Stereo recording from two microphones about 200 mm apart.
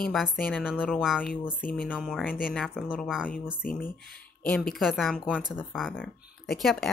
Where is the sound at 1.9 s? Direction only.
Centre (ahead or behind).